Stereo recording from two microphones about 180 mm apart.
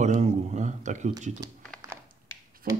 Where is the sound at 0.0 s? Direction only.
40° right (ahead or behind).